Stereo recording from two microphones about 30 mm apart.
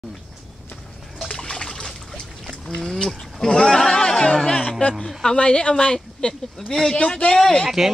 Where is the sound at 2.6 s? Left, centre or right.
Centre; by 7.2 s left.